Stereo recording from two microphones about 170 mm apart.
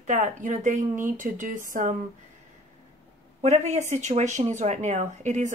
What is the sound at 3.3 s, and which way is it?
Speech, 40° right (ahead or behind).